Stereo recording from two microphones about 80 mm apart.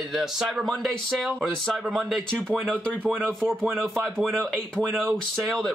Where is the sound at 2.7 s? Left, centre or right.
Right.